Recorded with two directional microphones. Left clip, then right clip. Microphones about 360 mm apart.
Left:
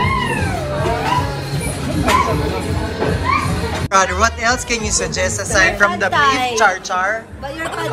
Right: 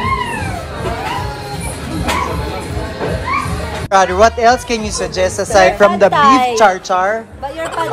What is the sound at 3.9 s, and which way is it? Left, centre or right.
A woman's voice, centre.